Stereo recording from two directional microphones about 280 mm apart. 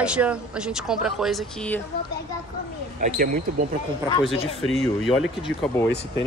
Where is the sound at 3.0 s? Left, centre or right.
Right.